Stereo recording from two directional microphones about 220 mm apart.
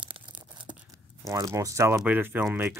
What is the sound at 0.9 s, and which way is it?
Speech, 15° right (ahead or behind).